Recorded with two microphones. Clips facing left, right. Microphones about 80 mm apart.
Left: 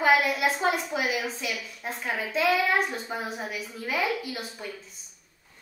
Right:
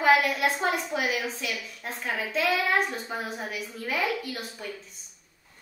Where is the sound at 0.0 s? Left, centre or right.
Centre.